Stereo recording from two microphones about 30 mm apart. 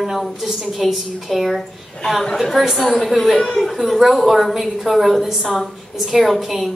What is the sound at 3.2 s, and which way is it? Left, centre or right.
Speech, centre.